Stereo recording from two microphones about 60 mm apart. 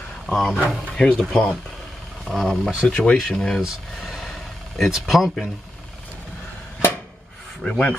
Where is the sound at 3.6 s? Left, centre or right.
Centre.